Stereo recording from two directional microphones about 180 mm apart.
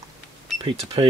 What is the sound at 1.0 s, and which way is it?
Speech, 25° right (ahead or behind).